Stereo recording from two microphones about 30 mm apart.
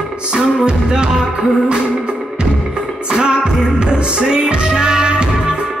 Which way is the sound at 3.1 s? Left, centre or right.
Right.